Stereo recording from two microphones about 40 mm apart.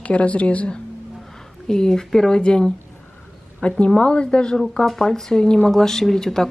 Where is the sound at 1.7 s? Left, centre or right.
Centre.